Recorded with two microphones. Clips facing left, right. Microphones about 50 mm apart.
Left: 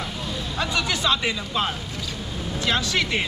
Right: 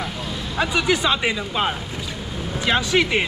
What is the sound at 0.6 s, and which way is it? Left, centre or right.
Speech, centre.